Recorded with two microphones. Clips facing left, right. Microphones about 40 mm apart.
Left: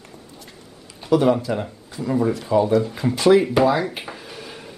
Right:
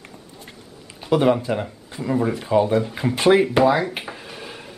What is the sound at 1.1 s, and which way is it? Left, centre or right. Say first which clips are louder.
Speech: even; right.